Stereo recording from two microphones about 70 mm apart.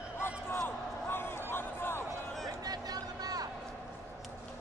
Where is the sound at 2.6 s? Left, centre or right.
Right.